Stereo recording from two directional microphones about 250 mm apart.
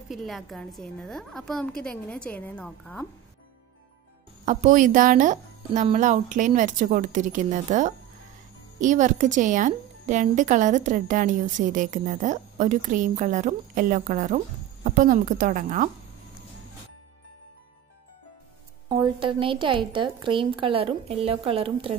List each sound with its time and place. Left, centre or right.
0.1 s a woman's voice: centre
4.5 s speech: right
18.9 s a woman's voice: centre